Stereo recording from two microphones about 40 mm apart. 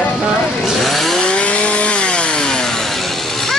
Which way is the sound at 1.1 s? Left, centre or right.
Left.